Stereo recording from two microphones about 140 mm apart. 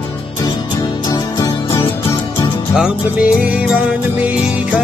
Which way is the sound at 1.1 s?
25° left (ahead or behind).